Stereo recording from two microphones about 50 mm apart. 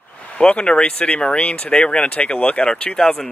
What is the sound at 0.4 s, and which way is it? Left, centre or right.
Speech, centre.